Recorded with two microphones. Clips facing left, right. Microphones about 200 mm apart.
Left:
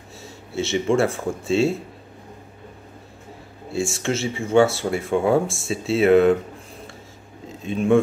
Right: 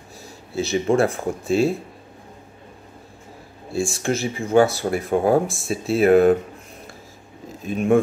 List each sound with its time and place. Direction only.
0.2 s a sound: 25° left (ahead or behind)
0.9 s speech: 25° left (ahead or behind)
3.7 s speech: 25° left (ahead or behind)
5.1 s speech: 35° right (ahead or behind)
5.7 s speech: 25° left (ahead or behind)
7.4 s speech: 30° left (ahead or behind)